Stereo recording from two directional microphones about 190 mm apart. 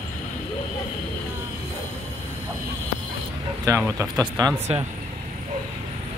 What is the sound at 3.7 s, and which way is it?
Speech, 15° right (ahead or behind).